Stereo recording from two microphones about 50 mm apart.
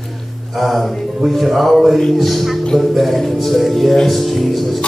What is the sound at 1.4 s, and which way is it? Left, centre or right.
Speech, centre.